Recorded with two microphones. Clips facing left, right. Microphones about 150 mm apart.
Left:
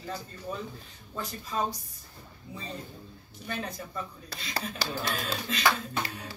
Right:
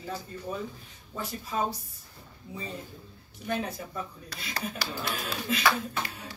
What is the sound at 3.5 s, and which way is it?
Speech, 10° right (ahead or behind).